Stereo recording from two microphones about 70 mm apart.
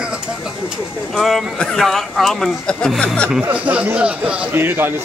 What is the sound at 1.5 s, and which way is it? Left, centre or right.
Speech, centre.